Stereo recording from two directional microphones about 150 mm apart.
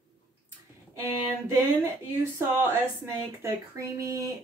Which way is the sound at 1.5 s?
15° right (ahead or behind).